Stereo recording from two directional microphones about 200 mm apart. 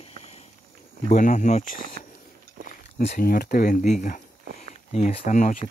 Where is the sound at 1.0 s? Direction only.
35° left (ahead or behind).